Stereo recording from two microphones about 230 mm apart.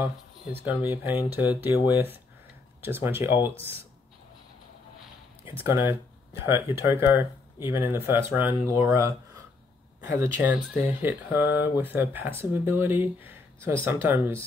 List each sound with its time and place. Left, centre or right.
0.0 s speech: centre
5.6 s speech: centre
10.1 s speech: centre